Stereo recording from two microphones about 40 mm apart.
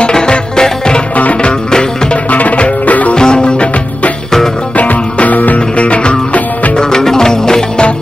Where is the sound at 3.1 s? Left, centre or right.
Left.